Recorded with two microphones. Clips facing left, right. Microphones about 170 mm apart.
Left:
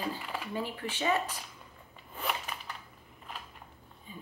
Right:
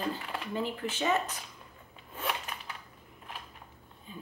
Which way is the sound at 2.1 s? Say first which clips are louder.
Even; centre (ahead or behind).